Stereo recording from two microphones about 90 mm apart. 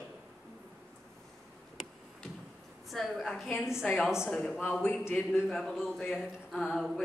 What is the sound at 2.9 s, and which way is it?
A man's voice, centre (ahead or behind).